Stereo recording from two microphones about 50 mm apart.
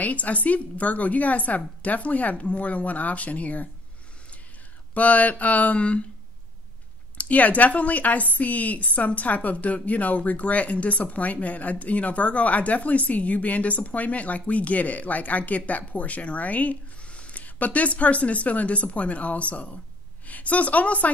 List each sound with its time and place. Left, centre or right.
0.0 s a woman's voice: left
4.9 s speech: left
7.2 s a woman's voice: left